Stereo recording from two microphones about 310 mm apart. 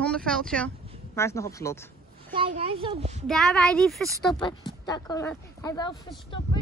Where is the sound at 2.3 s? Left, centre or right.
Centre.